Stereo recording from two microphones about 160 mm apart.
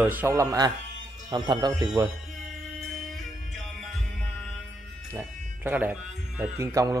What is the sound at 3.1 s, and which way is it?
Music, centre (ahead or behind).